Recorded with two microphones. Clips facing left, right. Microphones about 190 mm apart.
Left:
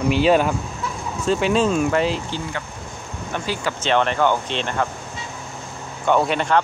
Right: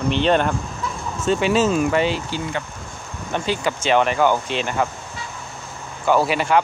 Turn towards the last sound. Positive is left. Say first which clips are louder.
# right 1 dB
turn(degrees=-5)  # may be behind; listen again after turning